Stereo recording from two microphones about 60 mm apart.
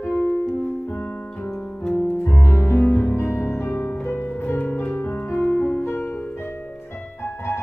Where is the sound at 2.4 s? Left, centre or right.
Left.